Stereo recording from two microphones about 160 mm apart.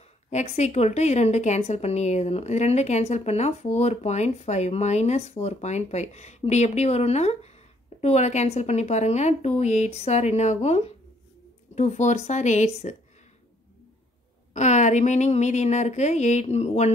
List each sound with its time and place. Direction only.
0.3 s a woman's voice: 45° left (ahead or behind)
14.5 s a woman's voice: 45° left (ahead or behind)